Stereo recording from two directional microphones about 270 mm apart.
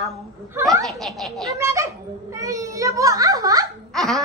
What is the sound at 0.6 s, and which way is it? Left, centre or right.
Speech, centre.